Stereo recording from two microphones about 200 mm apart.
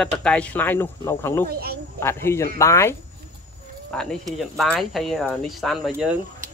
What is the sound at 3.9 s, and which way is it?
A child's voice, 5° left (ahead or behind).